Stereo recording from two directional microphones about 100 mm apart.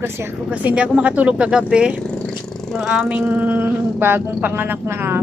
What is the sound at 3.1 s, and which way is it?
Speech, 15° right (ahead or behind).